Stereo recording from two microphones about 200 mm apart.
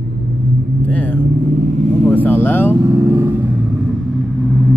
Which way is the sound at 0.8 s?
5° left (ahead or behind).